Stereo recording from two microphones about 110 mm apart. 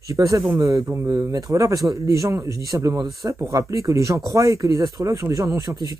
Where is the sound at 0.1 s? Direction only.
30° right (ahead or behind).